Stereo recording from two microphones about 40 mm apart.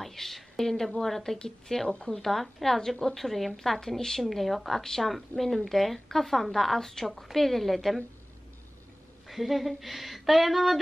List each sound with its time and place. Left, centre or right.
0.0 s a woman's voice: centre
2.0 s speech: centre
2.2 s speech: centre
9.3 s speech: centre